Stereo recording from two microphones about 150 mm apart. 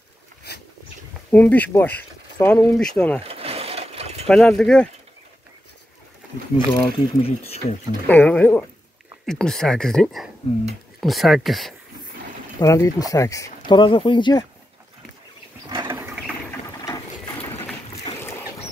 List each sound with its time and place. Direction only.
0.5 s a sound: 90° left
1.3 s speech: 10° left (ahead or behind)
3.3 s a sound: 40° right (ahead or behind)
4.3 s speech: 5° left (ahead or behind)
6.7 s speech: 40° left (ahead or behind)
8.1 s speech: 10° left (ahead or behind)
12.5 s speech: 20° left (ahead or behind)
13.7 s speech: 30° left (ahead or behind)
15.7 s a sound: 30° right (ahead or behind)